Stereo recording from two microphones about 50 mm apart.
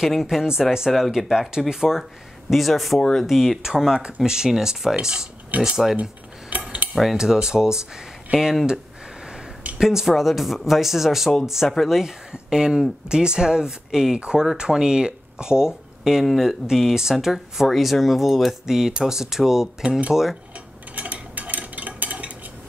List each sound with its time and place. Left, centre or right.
0.1 s speech: centre
6.6 s cutlery: right
7.2 s speech: centre
9.8 s speech: centre
12.0 s speech: centre
20.9 s a sound: right